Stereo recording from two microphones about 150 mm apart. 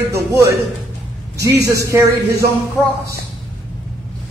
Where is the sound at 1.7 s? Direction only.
20° right (ahead or behind).